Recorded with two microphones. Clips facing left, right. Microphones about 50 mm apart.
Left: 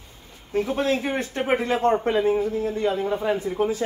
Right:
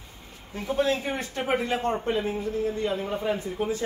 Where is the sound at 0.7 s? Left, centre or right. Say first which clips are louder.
Right 3 dB; left.